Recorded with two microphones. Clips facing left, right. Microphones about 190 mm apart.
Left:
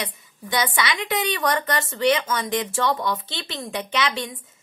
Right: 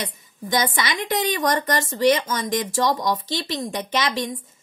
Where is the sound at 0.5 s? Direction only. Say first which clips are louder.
Right 1 dB; 45° right (ahead or behind).